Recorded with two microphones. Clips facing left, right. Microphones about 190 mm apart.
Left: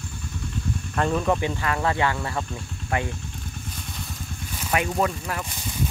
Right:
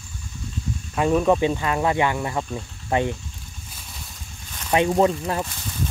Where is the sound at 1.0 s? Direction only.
15° right (ahead or behind).